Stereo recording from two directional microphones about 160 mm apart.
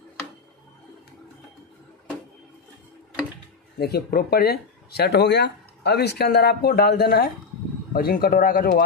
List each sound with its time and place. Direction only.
3.7 s speech: 80° left